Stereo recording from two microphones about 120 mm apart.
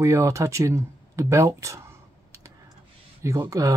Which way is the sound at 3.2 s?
25° right (ahead or behind).